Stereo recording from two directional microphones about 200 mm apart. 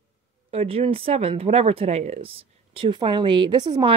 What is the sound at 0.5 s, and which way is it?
Speech, 30° right (ahead or behind).